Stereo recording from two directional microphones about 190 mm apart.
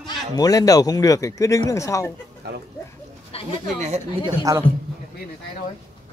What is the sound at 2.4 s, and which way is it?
Speech, 60° right (ahead or behind).